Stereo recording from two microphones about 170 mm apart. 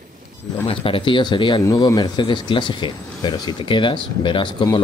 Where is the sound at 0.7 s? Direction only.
30° left (ahead or behind).